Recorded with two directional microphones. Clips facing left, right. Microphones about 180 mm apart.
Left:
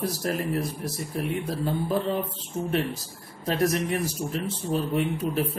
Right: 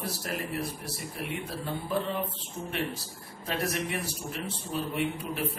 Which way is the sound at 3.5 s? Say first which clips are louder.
Left 7 dB; 45° left (ahead or behind).